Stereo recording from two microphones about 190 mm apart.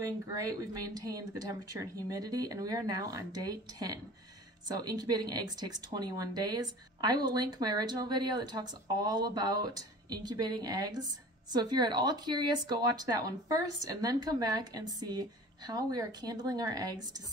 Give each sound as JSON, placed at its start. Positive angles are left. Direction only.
{"t": 0.0, "sound": "speech", "side_deg": -20}